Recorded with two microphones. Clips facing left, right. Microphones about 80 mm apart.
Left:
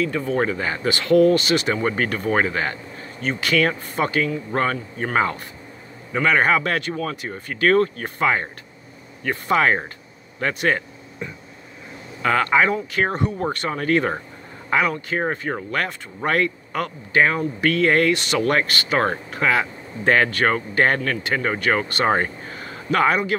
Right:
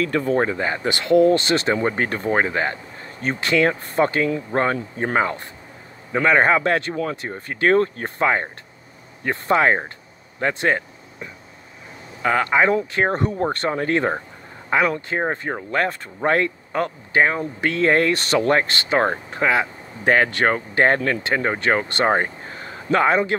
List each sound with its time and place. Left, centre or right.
0.0 s speech: right
5.1 s speech: right
6.1 s speech: right
12.2 s speech: centre
12.9 s speech: right